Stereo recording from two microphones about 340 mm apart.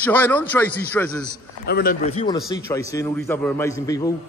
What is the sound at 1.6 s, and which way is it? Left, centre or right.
A man's voice, left.